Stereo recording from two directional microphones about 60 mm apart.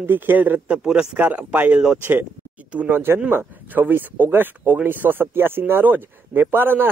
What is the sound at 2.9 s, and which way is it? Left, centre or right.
Speech, right.